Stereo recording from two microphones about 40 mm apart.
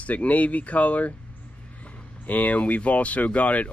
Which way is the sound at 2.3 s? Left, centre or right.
Left.